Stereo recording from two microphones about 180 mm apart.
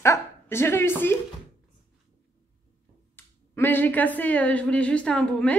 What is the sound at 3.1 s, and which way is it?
A woman's voice, 10° left (ahead or behind).